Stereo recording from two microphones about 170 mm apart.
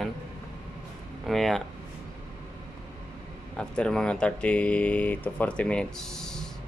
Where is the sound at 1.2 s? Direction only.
Centre (ahead or behind).